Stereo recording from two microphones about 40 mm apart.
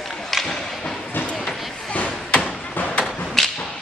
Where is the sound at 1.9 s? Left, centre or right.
Left.